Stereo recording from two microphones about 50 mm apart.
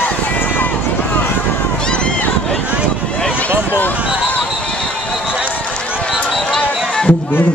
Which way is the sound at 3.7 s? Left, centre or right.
Left.